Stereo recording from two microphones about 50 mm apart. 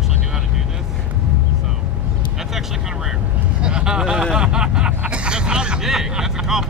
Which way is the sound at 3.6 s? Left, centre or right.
Centre.